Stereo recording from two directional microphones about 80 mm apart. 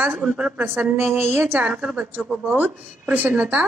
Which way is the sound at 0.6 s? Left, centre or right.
Right.